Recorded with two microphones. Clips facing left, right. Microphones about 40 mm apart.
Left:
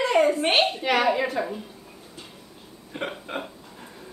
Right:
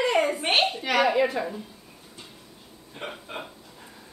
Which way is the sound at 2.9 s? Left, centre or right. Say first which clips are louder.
Left 5 dB; left.